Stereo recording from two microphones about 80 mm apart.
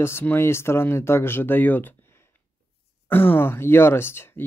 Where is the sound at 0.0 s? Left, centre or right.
Left.